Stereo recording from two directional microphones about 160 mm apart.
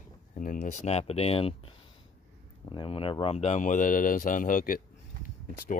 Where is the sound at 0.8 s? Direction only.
40° left (ahead or behind).